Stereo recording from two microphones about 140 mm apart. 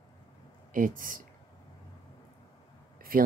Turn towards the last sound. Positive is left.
turn(degrees=-90)